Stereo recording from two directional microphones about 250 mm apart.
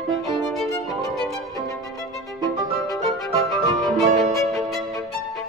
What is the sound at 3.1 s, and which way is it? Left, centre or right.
Music, centre.